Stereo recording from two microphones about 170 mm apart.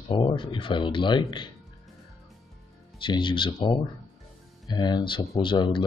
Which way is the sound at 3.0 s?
30° left (ahead or behind).